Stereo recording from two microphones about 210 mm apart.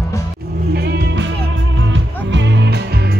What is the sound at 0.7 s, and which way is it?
Music, 50° right (ahead or behind).